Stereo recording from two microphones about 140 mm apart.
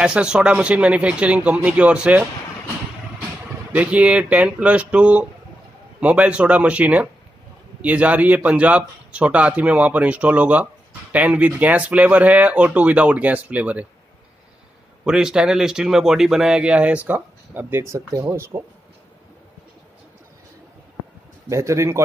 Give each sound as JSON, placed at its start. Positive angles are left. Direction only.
{"t": 0.0, "sound": "speech", "side_deg": -5}
{"t": 3.7, "sound": "speech", "side_deg": -10}
{"t": 15.0, "sound": "speech", "side_deg": -5}
{"t": 21.5, "sound": "a man's voice", "side_deg": -20}